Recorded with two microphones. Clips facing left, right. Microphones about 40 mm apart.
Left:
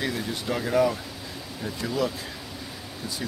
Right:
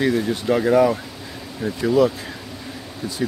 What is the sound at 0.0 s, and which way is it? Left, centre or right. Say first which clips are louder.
Speech: right 9 dB; centre.